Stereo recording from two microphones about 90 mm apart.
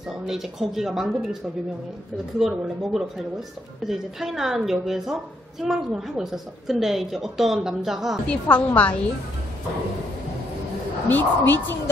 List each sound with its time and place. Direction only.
0.3 s speech: 5° right (ahead or behind)
8.3 s a woman's voice: 15° left (ahead or behind)
11.1 s speech: 20° left (ahead or behind)